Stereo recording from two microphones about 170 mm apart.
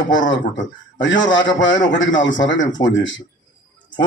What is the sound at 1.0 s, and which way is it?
Speech, 90° left.